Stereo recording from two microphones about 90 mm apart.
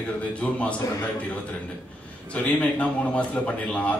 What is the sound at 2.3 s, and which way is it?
A man's voice, 15° left (ahead or behind).